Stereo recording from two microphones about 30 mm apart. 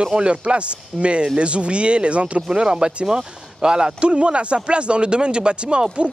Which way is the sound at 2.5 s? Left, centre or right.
Right.